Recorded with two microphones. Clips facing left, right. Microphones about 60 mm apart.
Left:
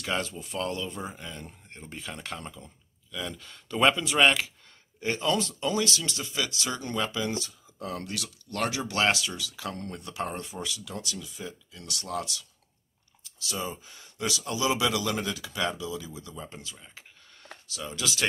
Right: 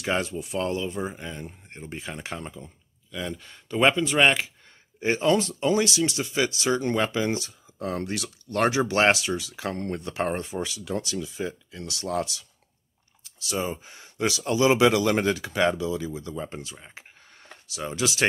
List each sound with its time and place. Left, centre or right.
0.0 s speech: right
0.3 s speech: centre
5.0 s speech: right
11.8 s speech: right
13.5 s speech: right